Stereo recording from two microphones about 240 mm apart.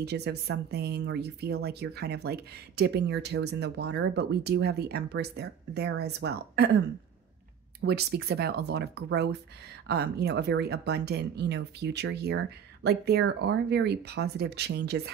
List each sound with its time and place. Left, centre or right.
0.0 s speech: right